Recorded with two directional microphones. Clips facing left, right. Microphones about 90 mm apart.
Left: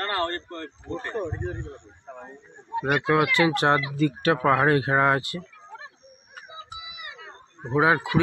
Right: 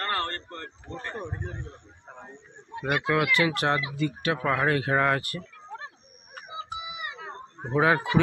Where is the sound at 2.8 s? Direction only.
30° left (ahead or behind).